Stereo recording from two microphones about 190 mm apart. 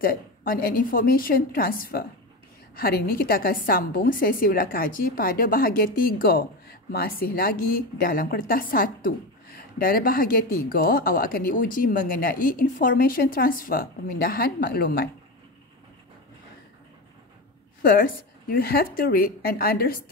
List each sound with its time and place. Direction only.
0.0 s a woman's voice: 50° left (ahead or behind)
17.8 s a woman's voice: 50° left (ahead or behind)